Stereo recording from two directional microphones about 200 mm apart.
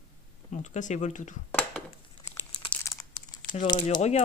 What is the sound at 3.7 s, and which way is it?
Speech, 25° left (ahead or behind).